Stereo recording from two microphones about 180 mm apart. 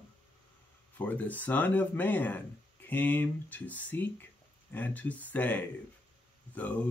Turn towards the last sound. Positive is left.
turn(degrees=10)  # may be behind; listen again after turning